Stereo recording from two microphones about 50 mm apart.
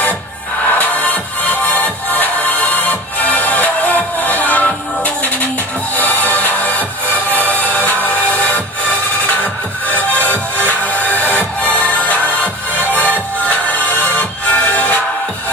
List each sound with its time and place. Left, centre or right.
0.7 s music: left
9.9 s music: left